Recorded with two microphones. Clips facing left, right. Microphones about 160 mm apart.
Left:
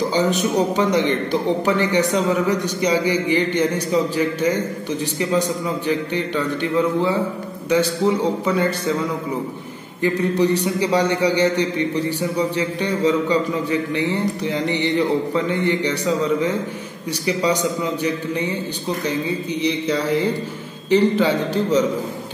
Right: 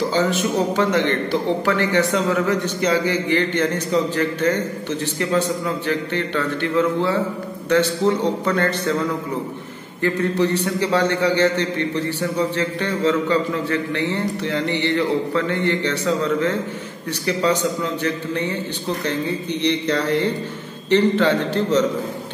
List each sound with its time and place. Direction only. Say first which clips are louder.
0.1 s a man's voice: left 1 dB; 15° left (ahead or behind)
5.9 s a man's voice: left 3 dB; 15° left (ahead or behind)
10.0 s a man's voice: left 1 dB; 15° left (ahead or behind)
19.6 s a man's voice: right 1 dB; 10° left (ahead or behind)